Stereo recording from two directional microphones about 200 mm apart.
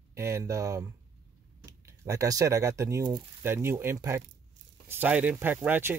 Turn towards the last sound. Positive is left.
turn(degrees=-10)  # may be behind; listen again after turning